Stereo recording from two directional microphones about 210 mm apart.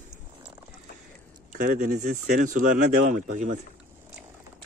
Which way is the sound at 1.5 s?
35° right (ahead or behind).